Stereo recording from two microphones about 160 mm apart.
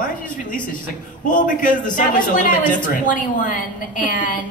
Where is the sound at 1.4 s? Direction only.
55° left (ahead or behind).